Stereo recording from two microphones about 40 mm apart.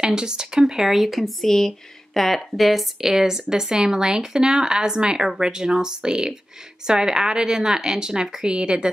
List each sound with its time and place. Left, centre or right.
0.0 s speech: centre